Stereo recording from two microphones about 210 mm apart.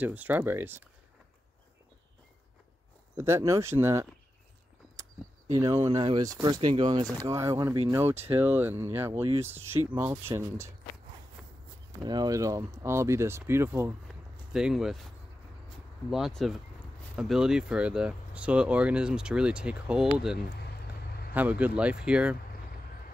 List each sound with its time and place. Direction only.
0.0 s speech: 10° right (ahead or behind)
3.2 s speech: 15° right (ahead or behind)
5.5 s speech: 25° right (ahead or behind)
11.4 s walk: centre (ahead or behind)
12.0 s speech: 20° right (ahead or behind)
14.0 s a sound: centre (ahead or behind)
16.1 s speech: centre (ahead or behind)